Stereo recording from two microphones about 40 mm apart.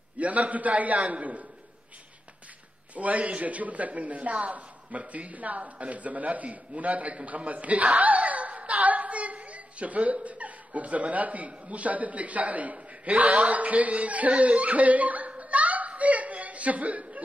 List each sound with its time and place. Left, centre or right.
0.2 s a man's voice: right
2.9 s a man's voice: right